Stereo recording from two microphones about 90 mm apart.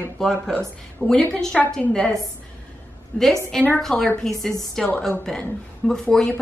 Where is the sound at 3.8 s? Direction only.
5° left (ahead or behind).